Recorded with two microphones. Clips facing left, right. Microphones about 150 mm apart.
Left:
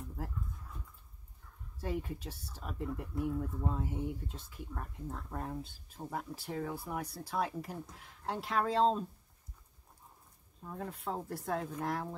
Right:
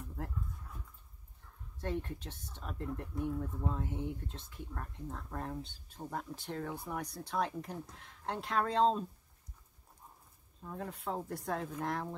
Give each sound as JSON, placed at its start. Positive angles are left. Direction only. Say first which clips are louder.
{"t": 1.8, "sound": "speech", "louder": "even", "side_deg": 5}
{"t": 10.6, "sound": "speech", "louder": "even", "side_deg": 0}